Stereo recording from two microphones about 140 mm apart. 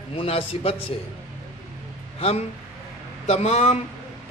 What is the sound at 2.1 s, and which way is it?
Speech, 45° left (ahead or behind).